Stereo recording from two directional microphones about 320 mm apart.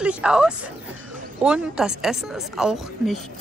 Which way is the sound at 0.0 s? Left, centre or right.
Centre.